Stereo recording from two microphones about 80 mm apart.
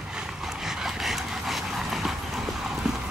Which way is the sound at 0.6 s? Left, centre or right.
Centre.